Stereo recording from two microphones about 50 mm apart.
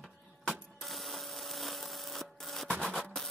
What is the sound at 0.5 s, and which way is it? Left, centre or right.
Wood, centre.